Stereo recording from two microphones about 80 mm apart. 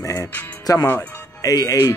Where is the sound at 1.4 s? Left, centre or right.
Left.